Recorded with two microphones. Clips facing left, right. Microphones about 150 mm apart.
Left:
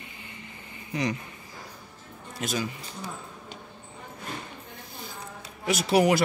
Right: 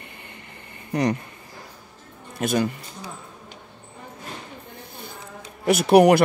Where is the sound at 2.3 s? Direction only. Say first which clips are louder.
Right 8 dB; 55° right (ahead or behind).